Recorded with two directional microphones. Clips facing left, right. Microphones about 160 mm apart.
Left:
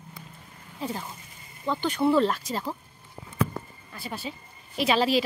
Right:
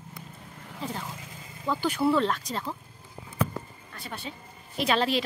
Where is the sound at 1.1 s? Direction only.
90° right.